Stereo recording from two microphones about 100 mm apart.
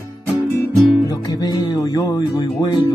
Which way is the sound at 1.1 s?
40° left (ahead or behind).